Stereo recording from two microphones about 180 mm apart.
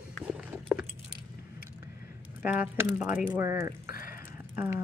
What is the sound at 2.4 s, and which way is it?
Speech, 5° right (ahead or behind).